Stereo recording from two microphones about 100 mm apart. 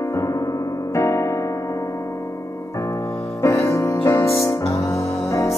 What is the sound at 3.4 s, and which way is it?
Music, 30° left (ahead or behind).